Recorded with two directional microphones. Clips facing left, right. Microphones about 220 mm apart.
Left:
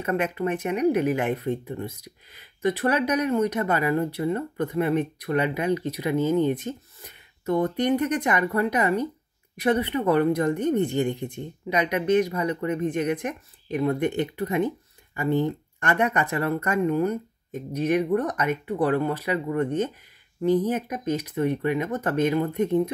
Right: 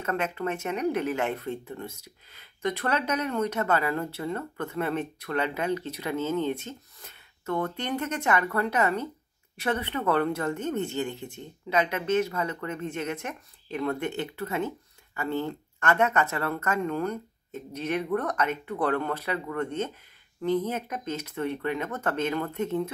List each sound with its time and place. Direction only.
0.0 s speech: 15° left (ahead or behind)